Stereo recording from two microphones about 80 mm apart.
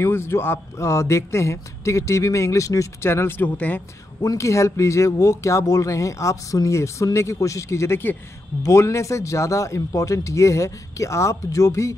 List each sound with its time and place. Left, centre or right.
0.0 s speech: left
4.2 s speech: left